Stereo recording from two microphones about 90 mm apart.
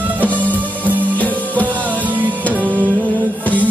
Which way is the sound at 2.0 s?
20° right (ahead or behind).